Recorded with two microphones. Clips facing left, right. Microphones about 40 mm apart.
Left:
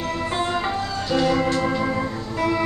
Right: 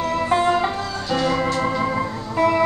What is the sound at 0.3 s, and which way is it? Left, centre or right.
Music, centre.